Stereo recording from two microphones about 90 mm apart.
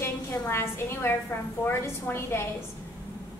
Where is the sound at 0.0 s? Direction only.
25° left (ahead or behind).